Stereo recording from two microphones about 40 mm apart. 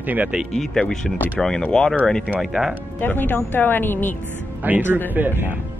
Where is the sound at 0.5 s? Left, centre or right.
Centre.